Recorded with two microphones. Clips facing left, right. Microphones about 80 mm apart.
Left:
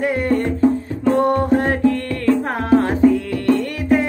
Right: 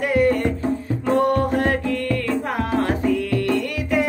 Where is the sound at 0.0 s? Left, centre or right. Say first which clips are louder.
Even; left.